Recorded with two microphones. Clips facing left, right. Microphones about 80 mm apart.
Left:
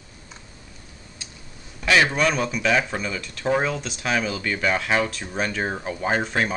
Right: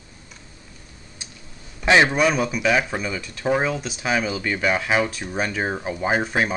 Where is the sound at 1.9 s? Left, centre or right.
Right.